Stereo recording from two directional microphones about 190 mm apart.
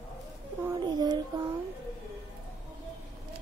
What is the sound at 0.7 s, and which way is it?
Child singing, 20° right (ahead or behind).